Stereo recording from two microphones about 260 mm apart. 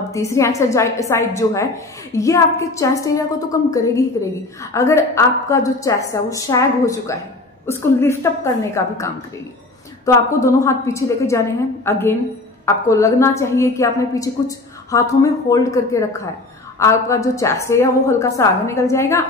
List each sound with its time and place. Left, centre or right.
0.1 s a woman's voice: centre